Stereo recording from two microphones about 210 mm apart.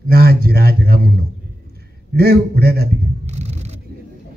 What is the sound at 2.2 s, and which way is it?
Speech, 45° right (ahead or behind).